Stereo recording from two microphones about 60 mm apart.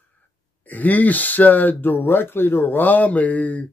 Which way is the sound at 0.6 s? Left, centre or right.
Left.